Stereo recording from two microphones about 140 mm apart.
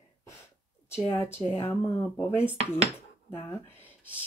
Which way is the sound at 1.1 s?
15° left (ahead or behind).